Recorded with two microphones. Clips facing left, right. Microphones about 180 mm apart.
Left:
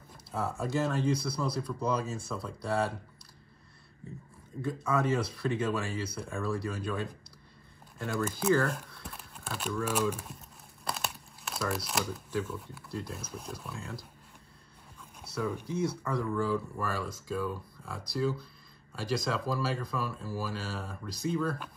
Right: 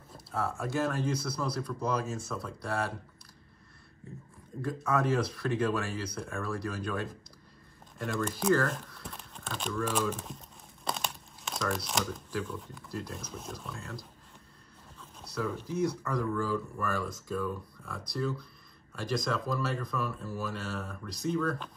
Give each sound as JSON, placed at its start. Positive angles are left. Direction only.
{"t": 0.4, "sound": "speech", "side_deg": 0}
{"t": 4.6, "sound": "speech", "side_deg": 0}
{"t": 16.3, "sound": "speech", "side_deg": 20}
{"t": 16.8, "sound": "speech", "side_deg": 0}